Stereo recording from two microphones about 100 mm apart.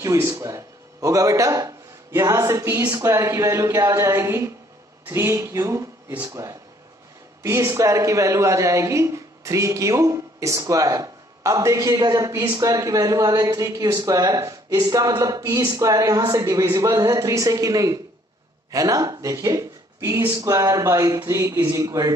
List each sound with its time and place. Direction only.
0.0 s a man's voice: 30° right (ahead or behind)